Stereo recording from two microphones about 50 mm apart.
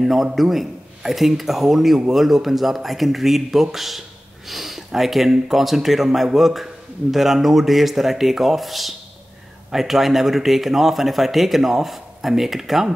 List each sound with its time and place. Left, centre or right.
0.0 s speech: centre